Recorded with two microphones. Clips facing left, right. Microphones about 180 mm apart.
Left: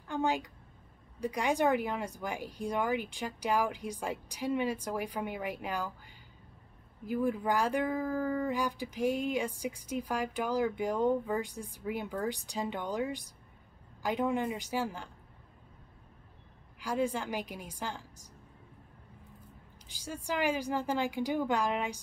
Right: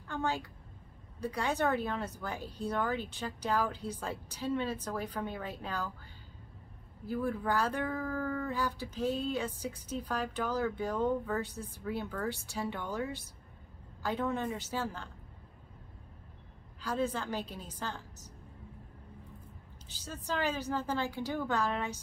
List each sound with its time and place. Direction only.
0.1 s a woman's voice: 15° left (ahead or behind)
7.1 s speech: 15° left (ahead or behind)
16.8 s speech: 15° left (ahead or behind)
19.9 s speech: 10° left (ahead or behind)